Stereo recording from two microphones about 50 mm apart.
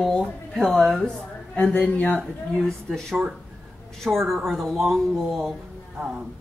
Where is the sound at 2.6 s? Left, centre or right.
Centre.